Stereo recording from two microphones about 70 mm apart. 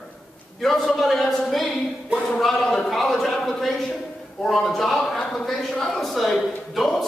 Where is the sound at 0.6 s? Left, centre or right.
Centre.